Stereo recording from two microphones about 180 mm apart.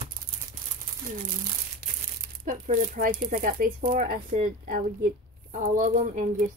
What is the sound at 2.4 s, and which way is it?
Speech, 45° right (ahead or behind).